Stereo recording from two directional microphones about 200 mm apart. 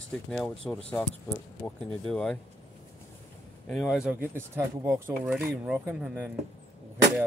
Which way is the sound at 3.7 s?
Centre (ahead or behind).